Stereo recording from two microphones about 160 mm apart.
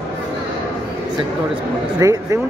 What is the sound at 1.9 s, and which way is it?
Speech, 20° right (ahead or behind).